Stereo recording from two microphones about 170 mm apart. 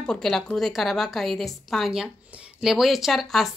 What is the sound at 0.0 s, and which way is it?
Speech, 5° left (ahead or behind).